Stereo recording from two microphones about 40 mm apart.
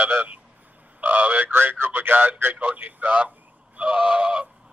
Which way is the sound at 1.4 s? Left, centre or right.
Right.